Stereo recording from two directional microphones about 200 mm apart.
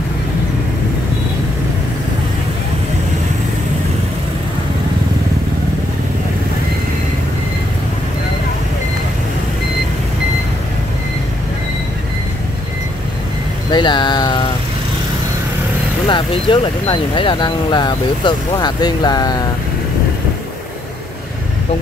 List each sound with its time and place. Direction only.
13.7 s vehicle: 20° left (ahead or behind)
16.1 s speech: 25° left (ahead or behind)